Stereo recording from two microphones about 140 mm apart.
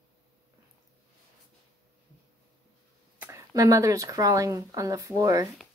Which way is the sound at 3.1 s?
15° right (ahead or behind).